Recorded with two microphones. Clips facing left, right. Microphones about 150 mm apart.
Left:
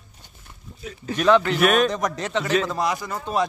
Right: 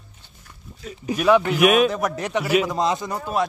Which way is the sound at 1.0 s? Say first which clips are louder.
Right 1 dB; 10° right (ahead or behind).